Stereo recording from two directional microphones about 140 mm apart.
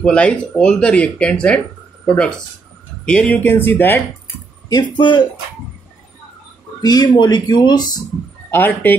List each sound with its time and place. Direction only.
0.0 s speech: 10° left (ahead or behind)
4.6 s speech: 30° left (ahead or behind)
6.8 s speech: 30° left (ahead or behind)
8.5 s speech: 15° left (ahead or behind)